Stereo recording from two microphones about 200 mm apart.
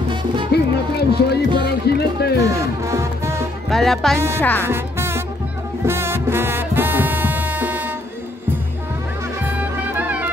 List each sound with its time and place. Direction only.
0.5 s music: 55° left (ahead or behind)
1.7 s speech: 55° left (ahead or behind)
2.4 s music: 15° right (ahead or behind)
3.7 s music: centre (ahead or behind)
4.4 s speech: 10° left (ahead or behind)
4.6 s music: 10° right (ahead or behind)
9.9 s music: 10° right (ahead or behind)